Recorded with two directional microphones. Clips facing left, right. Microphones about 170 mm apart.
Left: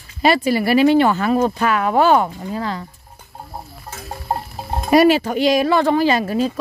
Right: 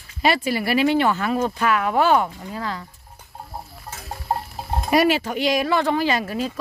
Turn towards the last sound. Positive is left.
turn(degrees=35)  # may be behind; listen again after turning